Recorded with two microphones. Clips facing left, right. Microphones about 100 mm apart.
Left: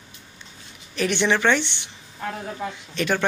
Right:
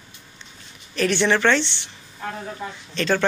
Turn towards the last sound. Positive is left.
turn(degrees=10)  # may be behind; listen again after turning